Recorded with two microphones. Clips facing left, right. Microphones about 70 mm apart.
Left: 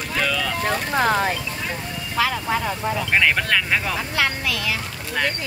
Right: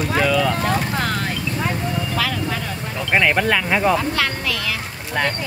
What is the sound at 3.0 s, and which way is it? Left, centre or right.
Speech, centre.